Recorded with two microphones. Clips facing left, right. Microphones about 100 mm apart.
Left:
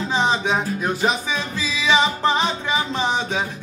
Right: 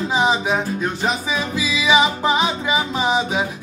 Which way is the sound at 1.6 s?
10° right (ahead or behind).